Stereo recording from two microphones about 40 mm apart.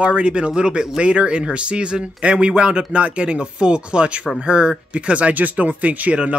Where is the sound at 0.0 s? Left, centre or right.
Right.